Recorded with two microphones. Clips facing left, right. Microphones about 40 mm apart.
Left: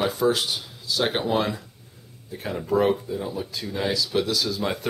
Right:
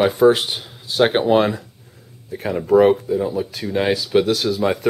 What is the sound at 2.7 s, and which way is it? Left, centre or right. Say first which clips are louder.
Speech: right 8 dB; right.